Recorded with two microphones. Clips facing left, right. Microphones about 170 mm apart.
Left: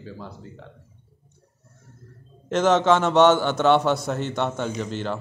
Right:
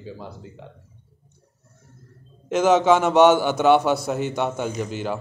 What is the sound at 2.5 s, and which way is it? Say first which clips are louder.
A man's voice: right 2 dB; 5° right (ahead or behind).